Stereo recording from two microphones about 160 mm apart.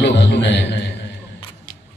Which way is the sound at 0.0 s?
90° left.